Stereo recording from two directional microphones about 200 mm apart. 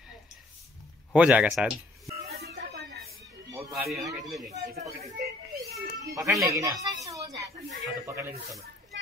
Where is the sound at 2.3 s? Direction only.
50° right (ahead or behind).